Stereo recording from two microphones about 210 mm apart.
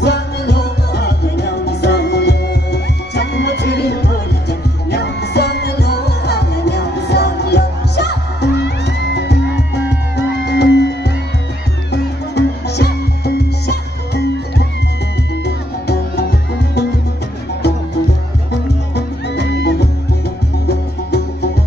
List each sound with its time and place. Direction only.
0.0 s music: 50° left (ahead or behind)
18.9 s music: 55° left (ahead or behind)